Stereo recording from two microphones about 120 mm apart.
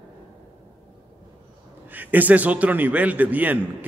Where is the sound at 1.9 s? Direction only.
15° right (ahead or behind).